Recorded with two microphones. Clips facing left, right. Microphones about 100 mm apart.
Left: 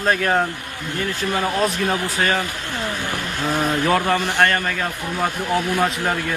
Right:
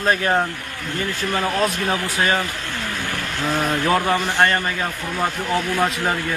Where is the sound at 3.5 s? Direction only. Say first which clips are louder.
Left 1 dB; 15° left (ahead or behind).